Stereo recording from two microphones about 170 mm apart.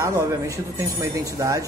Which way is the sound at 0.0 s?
20° right (ahead or behind).